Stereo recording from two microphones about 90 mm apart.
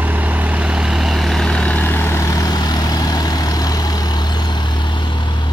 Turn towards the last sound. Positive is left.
turn(degrees=55)  # may be behind; listen again after turning